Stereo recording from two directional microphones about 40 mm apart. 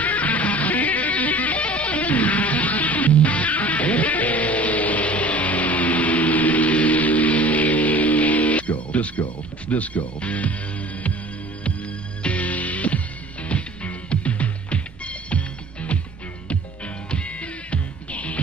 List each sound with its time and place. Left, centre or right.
0.0 s music: left
9.7 s speech: left
12.2 s music: left
17.1 s music: left